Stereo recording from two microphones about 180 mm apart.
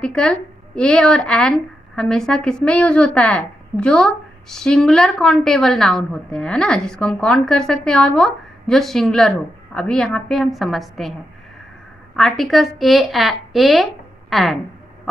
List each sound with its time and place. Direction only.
0.0 s a woman's voice: 5° left (ahead or behind)
12.2 s a woman's voice: centre (ahead or behind)